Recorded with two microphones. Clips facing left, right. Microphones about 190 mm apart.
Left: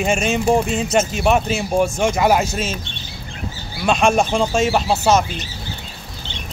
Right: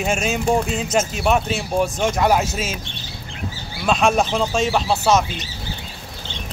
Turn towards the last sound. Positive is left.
turn(degrees=5)  # may be behind; listen again after turning